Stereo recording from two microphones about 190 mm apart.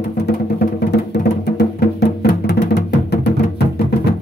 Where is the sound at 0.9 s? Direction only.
60° left (ahead or behind).